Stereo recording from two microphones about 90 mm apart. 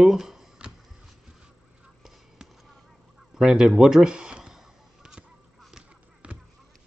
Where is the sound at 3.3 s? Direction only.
5° right (ahead or behind).